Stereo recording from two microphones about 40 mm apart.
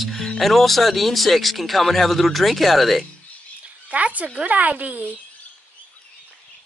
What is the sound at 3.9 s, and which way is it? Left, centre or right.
Speech, right.